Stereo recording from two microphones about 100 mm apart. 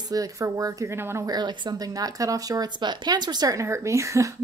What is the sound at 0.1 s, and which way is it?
Speech, 35° right (ahead or behind).